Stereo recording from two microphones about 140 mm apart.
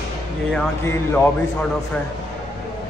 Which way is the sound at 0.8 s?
15° left (ahead or behind).